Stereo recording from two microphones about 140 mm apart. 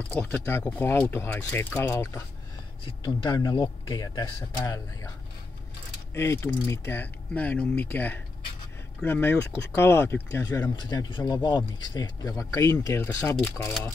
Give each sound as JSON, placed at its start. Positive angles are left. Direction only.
{"t": 0.1, "sound": "speech", "side_deg": 15}
{"t": 2.8, "sound": "speech", "side_deg": 40}
{"t": 6.1, "sound": "speech", "side_deg": 20}
{"t": 10.8, "sound": "speech", "side_deg": 30}